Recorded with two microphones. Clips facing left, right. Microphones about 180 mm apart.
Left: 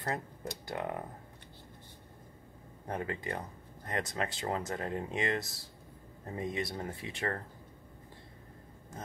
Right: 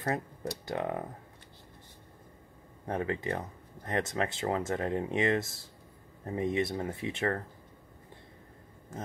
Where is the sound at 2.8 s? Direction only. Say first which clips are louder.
Right 4 dB; 20° right (ahead or behind).